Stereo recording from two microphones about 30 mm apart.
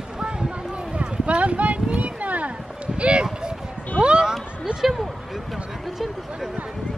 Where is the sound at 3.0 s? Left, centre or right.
Right.